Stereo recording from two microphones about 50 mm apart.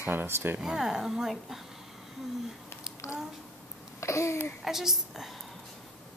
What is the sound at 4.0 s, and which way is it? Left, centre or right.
Babbling, left.